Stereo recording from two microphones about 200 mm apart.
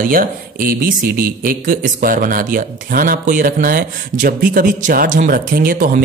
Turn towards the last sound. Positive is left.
turn(degrees=-45)  # may be behind; listen again after turning